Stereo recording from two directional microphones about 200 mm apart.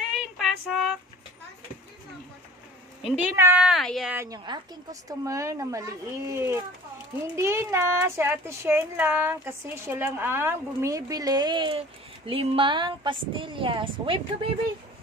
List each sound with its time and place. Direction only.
0.2 s child singing: 5° right (ahead or behind)
3.0 s speech: 5° right (ahead or behind)
4.2 s a woman's voice: 20° right (ahead or behind)